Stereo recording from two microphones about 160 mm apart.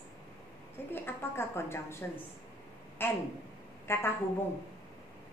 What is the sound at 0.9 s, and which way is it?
A woman's voice, 15° left (ahead or behind).